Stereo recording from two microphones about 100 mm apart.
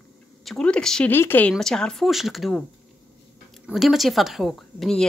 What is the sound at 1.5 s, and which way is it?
Speech, 5° left (ahead or behind).